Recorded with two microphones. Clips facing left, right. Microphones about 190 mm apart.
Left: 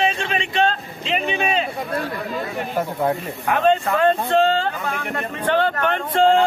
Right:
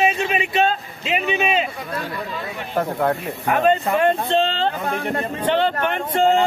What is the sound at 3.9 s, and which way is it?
Speech, 20° right (ahead or behind).